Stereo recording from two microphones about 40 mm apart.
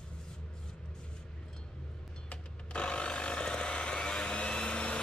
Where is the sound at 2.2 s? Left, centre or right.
Left.